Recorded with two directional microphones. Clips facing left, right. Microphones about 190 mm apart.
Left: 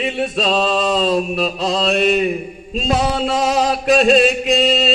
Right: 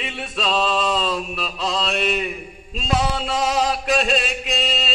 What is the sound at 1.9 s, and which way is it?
Mantra, 35° left (ahead or behind).